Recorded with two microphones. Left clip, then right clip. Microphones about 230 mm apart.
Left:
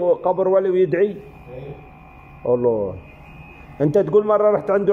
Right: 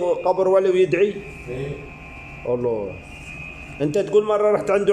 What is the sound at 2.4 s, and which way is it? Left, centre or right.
Speech, centre.